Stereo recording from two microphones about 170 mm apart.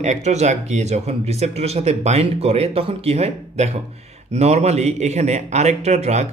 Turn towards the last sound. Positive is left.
turn(degrees=-40)  # may be behind; listen again after turning